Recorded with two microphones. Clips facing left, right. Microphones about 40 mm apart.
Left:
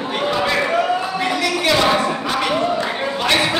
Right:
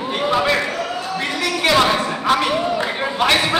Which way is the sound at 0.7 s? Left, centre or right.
Centre.